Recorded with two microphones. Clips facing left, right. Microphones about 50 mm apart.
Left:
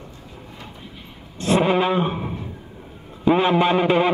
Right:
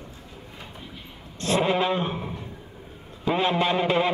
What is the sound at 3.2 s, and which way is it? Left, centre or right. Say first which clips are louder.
Speech: left 6 dB; centre.